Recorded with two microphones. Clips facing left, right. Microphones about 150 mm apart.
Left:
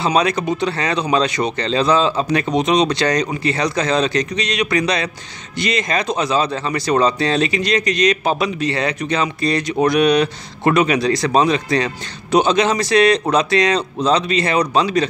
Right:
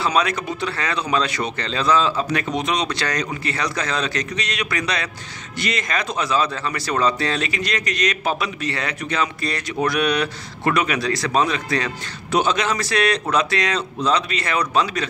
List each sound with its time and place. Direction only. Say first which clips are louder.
0.0 s speech: left 4 dB; 25° left (ahead or behind)